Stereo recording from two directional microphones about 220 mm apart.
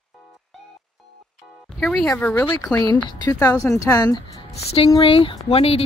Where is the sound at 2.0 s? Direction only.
10° left (ahead or behind).